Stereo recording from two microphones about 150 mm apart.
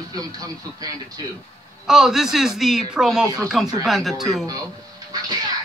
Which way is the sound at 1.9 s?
5° right (ahead or behind).